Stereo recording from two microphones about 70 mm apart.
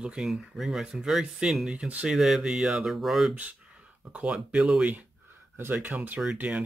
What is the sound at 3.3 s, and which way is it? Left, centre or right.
Speech, centre.